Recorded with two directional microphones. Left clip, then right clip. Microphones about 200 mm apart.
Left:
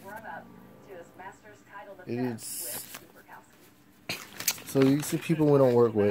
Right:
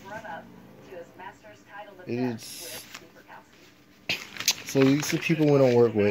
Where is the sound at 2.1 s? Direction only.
10° left (ahead or behind).